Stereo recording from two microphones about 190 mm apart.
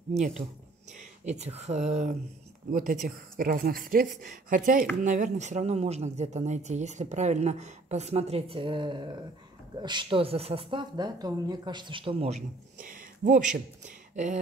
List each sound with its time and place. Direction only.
0.1 s a woman's voice: 35° right (ahead or behind)
12.7 s speech: 45° right (ahead or behind)